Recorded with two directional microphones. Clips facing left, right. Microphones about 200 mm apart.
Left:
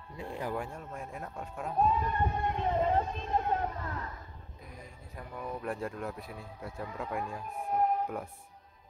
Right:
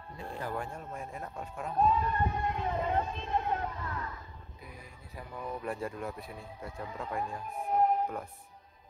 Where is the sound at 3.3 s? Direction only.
35° left (ahead or behind).